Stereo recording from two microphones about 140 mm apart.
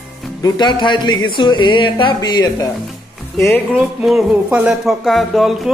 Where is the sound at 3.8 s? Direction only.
5° right (ahead or behind).